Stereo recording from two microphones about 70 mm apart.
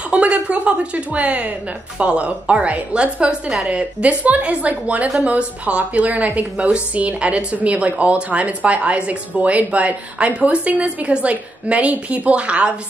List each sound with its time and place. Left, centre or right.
0.1 s a woman's voice: centre